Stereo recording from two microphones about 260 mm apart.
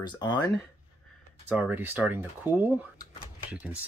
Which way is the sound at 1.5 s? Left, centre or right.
Centre.